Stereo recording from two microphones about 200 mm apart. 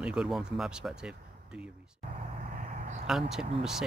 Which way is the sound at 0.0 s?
5° right (ahead or behind).